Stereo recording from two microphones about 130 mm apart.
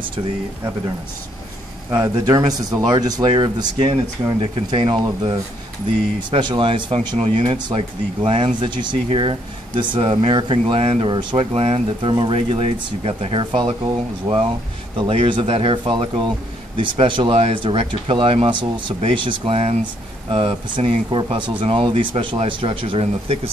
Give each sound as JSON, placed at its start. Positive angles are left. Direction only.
{"t": 1.9, "sound": "speech", "side_deg": -30}
{"t": 3.7, "sound": "speech", "side_deg": -50}
{"t": 4.4, "sound": "speech", "side_deg": -35}
{"t": 6.3, "sound": "speech", "side_deg": -40}
{"t": 11.5, "sound": "speech", "side_deg": -50}